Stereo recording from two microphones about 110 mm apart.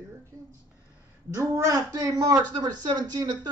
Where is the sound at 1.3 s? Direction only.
30° right (ahead or behind).